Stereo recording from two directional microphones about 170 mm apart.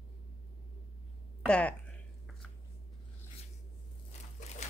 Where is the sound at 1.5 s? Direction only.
5° left (ahead or behind).